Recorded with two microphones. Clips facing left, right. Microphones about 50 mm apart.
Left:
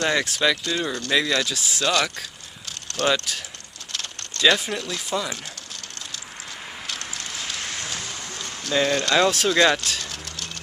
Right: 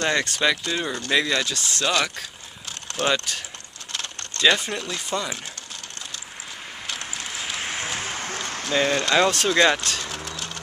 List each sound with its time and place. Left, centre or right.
0.0 s speech: centre
0.4 s speech: centre
6.9 s rain on surface: centre
8.0 s a sound: right
8.6 s speech: centre